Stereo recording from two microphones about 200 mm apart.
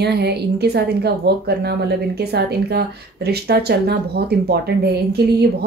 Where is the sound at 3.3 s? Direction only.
55° right (ahead or behind).